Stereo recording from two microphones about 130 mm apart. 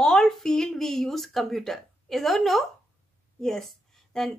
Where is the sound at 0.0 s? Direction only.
5° left (ahead or behind).